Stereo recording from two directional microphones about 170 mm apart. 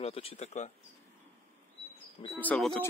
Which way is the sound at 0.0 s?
35° left (ahead or behind).